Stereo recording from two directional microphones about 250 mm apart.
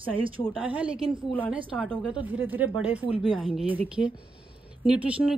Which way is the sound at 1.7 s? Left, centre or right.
Centre.